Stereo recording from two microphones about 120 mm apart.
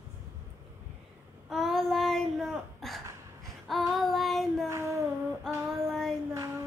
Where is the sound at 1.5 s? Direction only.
Centre (ahead or behind).